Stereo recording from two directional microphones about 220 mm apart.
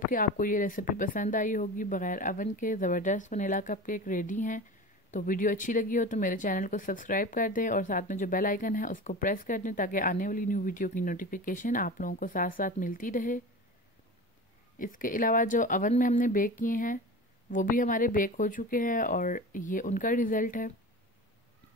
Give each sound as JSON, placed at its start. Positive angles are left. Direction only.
{"t": 0.1, "sound": "a woman's voice", "side_deg": 40}
{"t": 14.8, "sound": "a woman's voice", "side_deg": 40}